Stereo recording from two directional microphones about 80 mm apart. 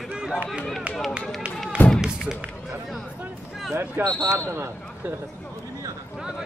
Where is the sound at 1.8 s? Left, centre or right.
Left.